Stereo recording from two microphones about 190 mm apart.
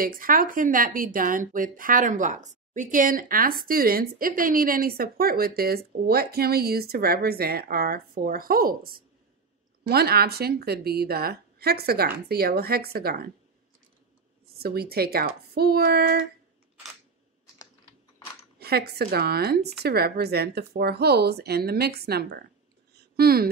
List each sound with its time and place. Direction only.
0.0 s speech: 50° right (ahead or behind)
14.5 s speech: 55° right (ahead or behind)
18.6 s speech: 55° right (ahead or behind)